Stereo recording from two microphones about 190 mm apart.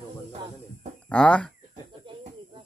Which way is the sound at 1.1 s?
5° left (ahead or behind).